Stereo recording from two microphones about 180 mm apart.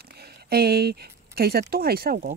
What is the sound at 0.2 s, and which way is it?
Speech, 60° right (ahead or behind).